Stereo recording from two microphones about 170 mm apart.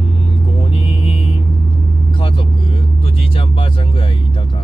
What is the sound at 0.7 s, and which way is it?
Vehicle, 30° left (ahead or behind).